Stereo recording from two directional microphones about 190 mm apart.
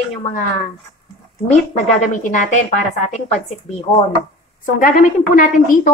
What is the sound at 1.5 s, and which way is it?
A woman's voice, 40° left (ahead or behind).